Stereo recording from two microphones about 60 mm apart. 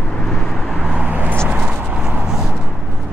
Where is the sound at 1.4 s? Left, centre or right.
Right.